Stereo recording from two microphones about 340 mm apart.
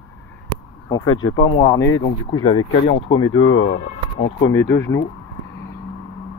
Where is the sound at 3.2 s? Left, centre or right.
Left.